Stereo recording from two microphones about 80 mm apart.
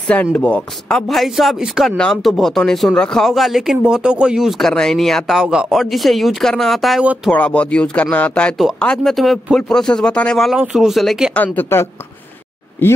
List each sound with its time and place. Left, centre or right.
0.4 s speech: centre
7.3 s speech: centre
10.7 s speech: centre
11.3 s speech: left